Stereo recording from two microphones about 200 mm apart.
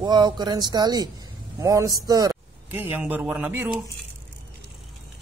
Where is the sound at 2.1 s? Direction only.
20° right (ahead or behind).